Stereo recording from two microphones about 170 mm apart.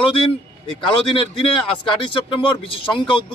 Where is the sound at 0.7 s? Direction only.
30° left (ahead or behind).